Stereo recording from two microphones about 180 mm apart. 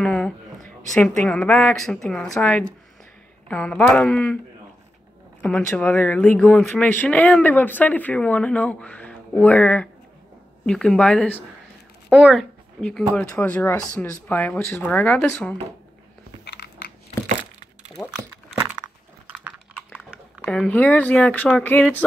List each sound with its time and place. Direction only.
0.0 s speech: 5° left (ahead or behind)
5.4 s speech: 5° left (ahead or behind)
13.3 s speech: 10° left (ahead or behind)
16.4 s crushing: 65° left (ahead or behind)
20.4 s speech: 5° left (ahead or behind)